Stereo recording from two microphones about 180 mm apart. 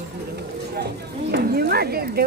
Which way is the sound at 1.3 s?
60° right (ahead or behind).